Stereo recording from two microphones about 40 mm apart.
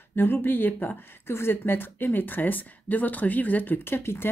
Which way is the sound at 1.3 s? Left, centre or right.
Left.